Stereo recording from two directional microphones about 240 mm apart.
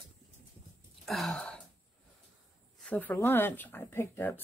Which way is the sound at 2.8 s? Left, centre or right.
Centre.